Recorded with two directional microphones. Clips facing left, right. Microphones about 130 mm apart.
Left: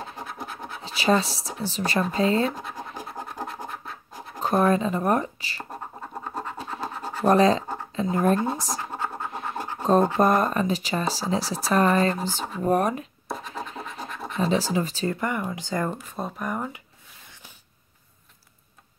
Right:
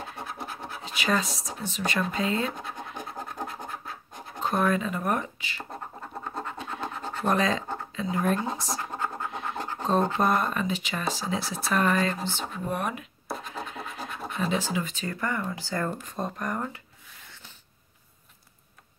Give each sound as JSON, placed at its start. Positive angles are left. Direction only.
{"t": 0.8, "sound": "speech", "side_deg": 30}
{"t": 4.4, "sound": "speech", "side_deg": 40}
{"t": 5.7, "sound": "scratch", "side_deg": 10}
{"t": 7.2, "sound": "speech", "side_deg": 35}
{"t": 8.7, "sound": "scratch", "side_deg": 15}
{"t": 10.1, "sound": "speech", "side_deg": 40}
{"t": 13.3, "sound": "scratch", "side_deg": 0}
{"t": 14.4, "sound": "speech", "side_deg": 35}
{"t": 15.1, "sound": "speech", "side_deg": 15}
{"t": 16.0, "sound": "speech", "side_deg": 5}
{"t": 17.3, "sound": "a sound", "side_deg": 10}